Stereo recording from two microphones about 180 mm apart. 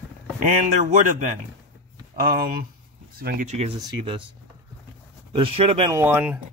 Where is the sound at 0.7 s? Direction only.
45° right (ahead or behind).